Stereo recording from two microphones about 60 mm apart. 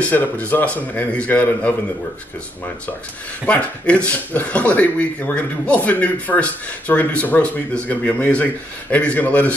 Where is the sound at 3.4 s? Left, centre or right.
Left.